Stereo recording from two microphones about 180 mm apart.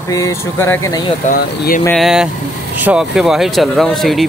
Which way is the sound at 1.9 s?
5° right (ahead or behind).